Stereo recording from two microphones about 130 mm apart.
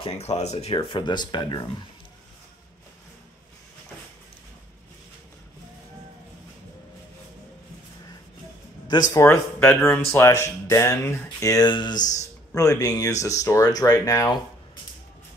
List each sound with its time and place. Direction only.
0.0 s speech: 55° left (ahead or behind); by 1.7 s 30° left (ahead or behind)
9.1 s speech: 20° left (ahead or behind)